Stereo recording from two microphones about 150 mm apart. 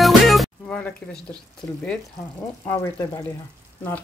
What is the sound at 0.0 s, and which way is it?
Music, centre (ahead or behind).